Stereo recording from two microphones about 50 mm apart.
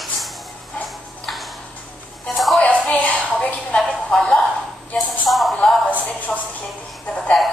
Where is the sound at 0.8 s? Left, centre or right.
Centre.